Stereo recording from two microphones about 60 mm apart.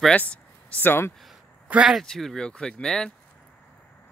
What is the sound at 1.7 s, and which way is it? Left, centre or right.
Speech, right.